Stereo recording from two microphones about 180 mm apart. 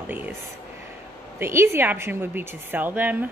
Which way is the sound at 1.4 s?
15° right (ahead or behind).